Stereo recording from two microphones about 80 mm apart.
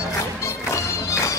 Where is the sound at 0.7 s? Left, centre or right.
Left.